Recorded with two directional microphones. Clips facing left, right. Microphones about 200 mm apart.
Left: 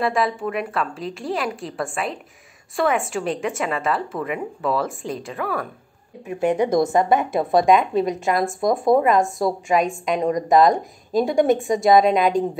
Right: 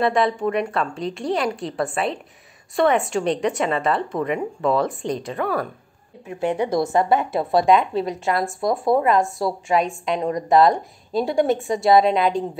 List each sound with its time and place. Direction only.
0.0 s a woman's voice: centre (ahead or behind)
6.2 s a woman's voice: 15° left (ahead or behind)